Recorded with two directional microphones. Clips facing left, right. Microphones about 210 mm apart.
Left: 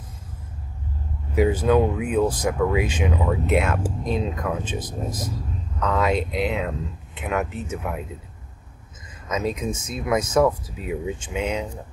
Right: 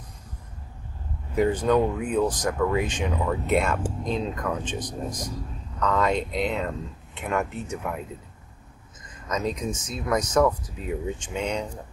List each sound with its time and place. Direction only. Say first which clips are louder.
1.3 s speech: left 2 dB; 5° left (ahead or behind)
9.3 s speech: left 2 dB; 5° left (ahead or behind)